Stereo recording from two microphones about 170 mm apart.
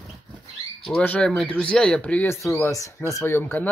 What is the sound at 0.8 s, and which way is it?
Speech, 5° left (ahead or behind).